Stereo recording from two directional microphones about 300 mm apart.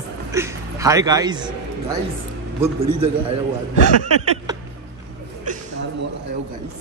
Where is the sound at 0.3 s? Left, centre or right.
Centre.